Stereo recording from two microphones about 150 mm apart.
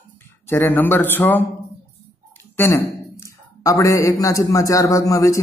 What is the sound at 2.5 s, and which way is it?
A man's voice, 15° left (ahead or behind).